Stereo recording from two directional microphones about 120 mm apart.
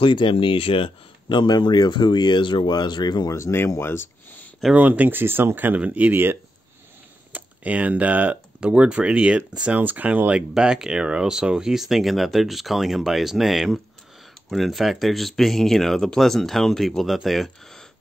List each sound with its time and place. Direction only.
0.0 s speech: 45° left (ahead or behind); by 4.0 s 20° left (ahead or behind)
4.7 s speech: 15° right (ahead or behind)
7.3 s speech: 10° right (ahead or behind)